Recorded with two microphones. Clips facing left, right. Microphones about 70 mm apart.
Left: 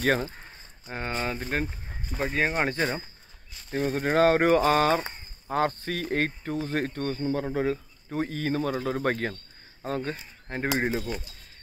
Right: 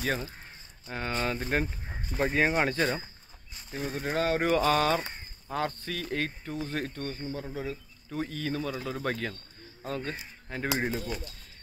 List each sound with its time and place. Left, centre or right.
0.0 s speech: left
0.8 s speech: centre
1.1 s speech: centre
3.7 s speech: left
8.1 s speech: left
11.1 s speech: centre